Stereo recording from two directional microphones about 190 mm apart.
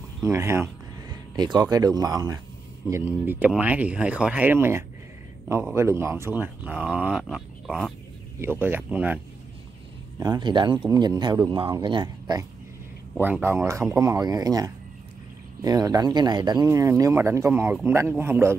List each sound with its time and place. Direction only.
0.2 s speech: 15° right (ahead or behind)
8.4 s speech: 10° right (ahead or behind)
10.1 s speech: 20° right (ahead or behind)
13.2 s speech: 10° right (ahead or behind)